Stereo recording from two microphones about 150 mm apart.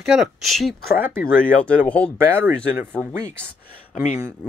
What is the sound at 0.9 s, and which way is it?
Speech, 70° left (ahead or behind).